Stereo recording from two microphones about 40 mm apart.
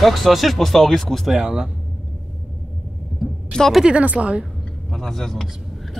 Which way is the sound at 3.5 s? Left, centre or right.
Left.